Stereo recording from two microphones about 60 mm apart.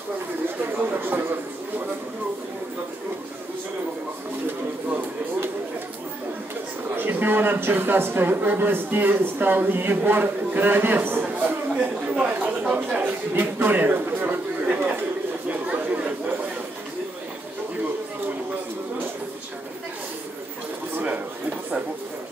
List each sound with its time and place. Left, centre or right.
0.7 s a man's voice: right
7.0 s a man's voice: right
11.2 s a sound: right
12.3 s a man's voice: right
15.4 s chatter: right
21.0 s speech: right